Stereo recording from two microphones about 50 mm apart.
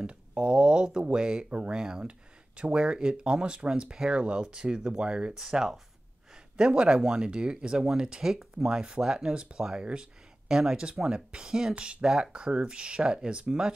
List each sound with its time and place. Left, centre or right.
0.0 s speech: right
5.4 s speech: centre